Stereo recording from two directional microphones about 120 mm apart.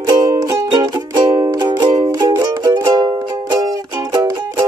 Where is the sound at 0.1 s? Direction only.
30° right (ahead or behind).